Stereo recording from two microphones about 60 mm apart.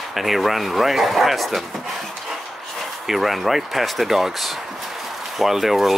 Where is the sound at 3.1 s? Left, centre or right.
Centre.